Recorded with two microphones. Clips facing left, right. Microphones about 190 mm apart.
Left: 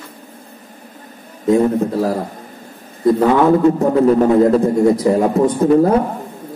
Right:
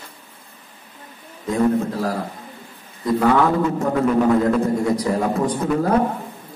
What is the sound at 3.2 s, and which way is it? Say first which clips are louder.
Speech: left 2 dB; 20° left (ahead or behind).